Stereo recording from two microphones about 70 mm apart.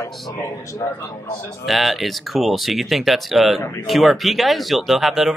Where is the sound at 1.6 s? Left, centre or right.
Centre.